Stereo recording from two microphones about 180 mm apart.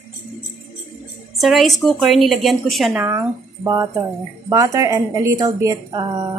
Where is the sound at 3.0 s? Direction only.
15° right (ahead or behind).